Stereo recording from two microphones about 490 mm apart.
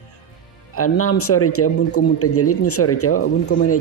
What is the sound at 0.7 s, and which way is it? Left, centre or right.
Speech, left.